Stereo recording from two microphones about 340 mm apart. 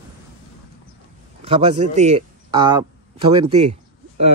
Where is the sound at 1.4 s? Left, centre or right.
Centre.